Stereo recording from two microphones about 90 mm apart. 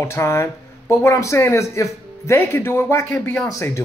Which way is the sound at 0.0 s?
30° left (ahead or behind).